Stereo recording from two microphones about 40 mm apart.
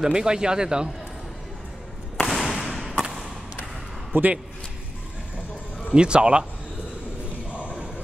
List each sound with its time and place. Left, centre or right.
0.0 s speech: centre
2.2 s a sound: centre
4.1 s a man's voice: right
5.9 s speech: right